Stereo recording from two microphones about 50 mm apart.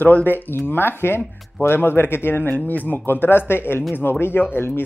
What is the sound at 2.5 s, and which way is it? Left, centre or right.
Speech, left.